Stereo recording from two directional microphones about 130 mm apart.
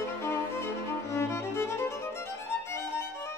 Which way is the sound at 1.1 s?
20° left (ahead or behind).